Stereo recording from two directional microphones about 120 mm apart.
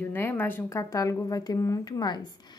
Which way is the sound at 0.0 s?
15° left (ahead or behind).